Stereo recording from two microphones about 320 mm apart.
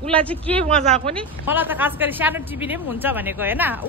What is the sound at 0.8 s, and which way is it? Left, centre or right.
Speech, centre.